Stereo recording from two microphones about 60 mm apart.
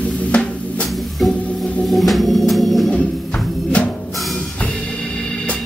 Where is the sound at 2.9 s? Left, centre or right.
Centre.